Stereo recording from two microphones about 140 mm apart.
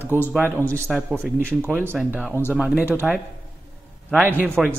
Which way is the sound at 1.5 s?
15° right (ahead or behind).